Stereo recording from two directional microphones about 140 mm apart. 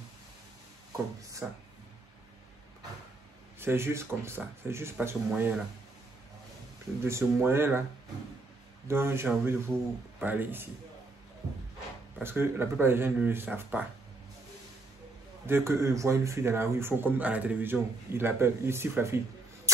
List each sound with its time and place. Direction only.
1.4 s speech: 15° right (ahead or behind)
3.5 s speech: 15° right (ahead or behind)
7.0 s speech: 20° right (ahead or behind)
8.8 s speech: 20° right (ahead or behind)
12.2 s speech: 15° right (ahead or behind)
15.4 s speech: 20° right (ahead or behind)